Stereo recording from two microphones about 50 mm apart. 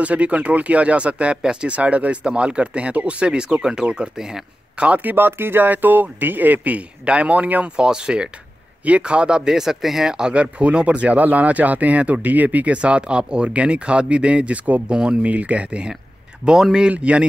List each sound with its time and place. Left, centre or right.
0.0 s speech: right
1.7 s speech: right
4.8 s speech: right
5.1 s speech: right
7.7 s speech: centre
16.9 s speech: right